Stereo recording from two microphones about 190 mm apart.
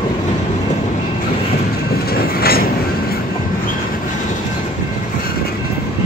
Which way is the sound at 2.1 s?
55° left (ahead or behind).